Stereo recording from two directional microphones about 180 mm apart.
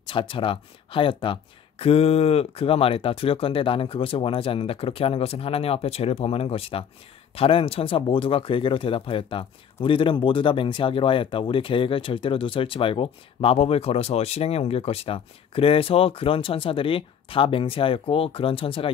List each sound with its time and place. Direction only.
0.0 s speech: 30° left (ahead or behind)